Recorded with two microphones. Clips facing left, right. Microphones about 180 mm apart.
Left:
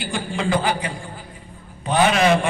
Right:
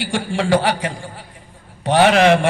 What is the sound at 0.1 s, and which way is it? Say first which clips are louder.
A man's voice: right 5 dB; 80° right.